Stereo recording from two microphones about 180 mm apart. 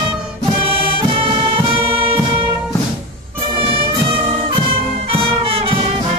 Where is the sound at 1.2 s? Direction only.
30° right (ahead or behind).